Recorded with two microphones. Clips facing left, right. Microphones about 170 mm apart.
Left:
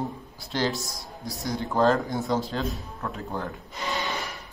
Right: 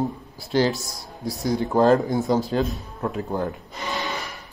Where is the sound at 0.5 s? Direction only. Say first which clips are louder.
Right 6 dB; 5° right (ahead or behind).